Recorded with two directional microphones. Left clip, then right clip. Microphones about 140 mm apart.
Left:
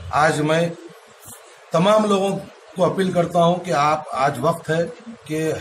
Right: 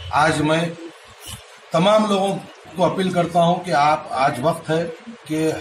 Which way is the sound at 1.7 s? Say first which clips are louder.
Even; 15° left (ahead or behind).